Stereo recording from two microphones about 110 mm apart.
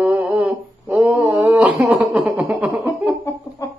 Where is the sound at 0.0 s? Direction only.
15° right (ahead or behind).